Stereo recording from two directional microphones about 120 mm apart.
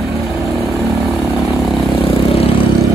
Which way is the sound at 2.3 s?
50° left (ahead or behind).